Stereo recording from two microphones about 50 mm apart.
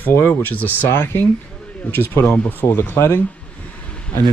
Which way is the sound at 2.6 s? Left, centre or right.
Left.